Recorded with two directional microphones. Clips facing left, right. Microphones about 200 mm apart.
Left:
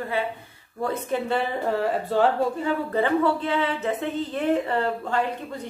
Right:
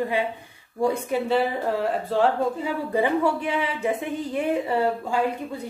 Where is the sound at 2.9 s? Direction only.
10° right (ahead or behind).